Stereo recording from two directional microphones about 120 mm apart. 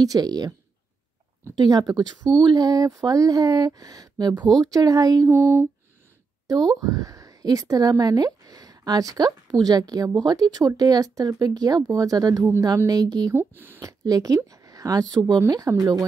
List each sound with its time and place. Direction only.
0.0 s speech: 30° right (ahead or behind)
1.6 s speech: 35° right (ahead or behind)
6.8 s speech: 30° right (ahead or behind)
13.4 s speech: 15° right (ahead or behind)
13.8 s speech: 30° right (ahead or behind)